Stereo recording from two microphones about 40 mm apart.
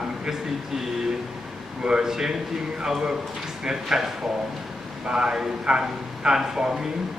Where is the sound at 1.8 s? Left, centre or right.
Centre.